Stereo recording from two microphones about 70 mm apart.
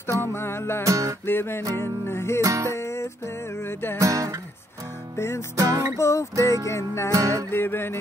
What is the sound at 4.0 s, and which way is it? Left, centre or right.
Music, right.